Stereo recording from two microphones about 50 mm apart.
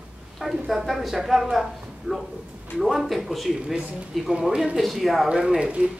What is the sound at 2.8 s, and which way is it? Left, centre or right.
Speech, centre.